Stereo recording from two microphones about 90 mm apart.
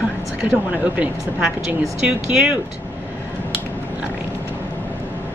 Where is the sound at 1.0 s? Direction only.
15° right (ahead or behind).